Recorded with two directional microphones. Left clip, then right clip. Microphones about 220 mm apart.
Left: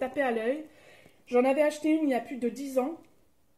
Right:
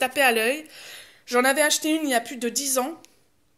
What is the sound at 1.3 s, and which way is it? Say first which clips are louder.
Speech: right 4 dB; 45° right (ahead or behind).